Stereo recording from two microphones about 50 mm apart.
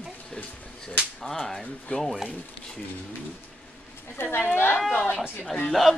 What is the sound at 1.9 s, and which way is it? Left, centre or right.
Speech, left.